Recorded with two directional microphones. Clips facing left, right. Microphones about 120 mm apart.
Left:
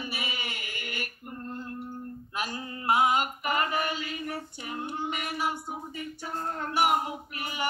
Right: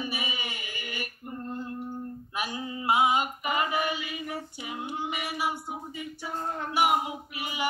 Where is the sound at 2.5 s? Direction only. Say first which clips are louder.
Right 3 dB; 15° right (ahead or behind).